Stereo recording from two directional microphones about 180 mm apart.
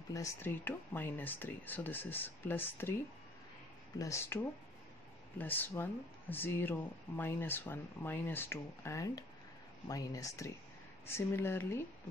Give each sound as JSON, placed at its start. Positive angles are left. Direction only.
{"t": 0.1, "sound": "speech", "side_deg": 15}
{"t": 4.0, "sound": "speech", "side_deg": 15}